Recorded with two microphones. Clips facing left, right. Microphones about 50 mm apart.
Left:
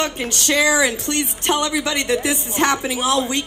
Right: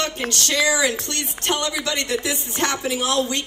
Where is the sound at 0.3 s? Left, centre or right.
Left.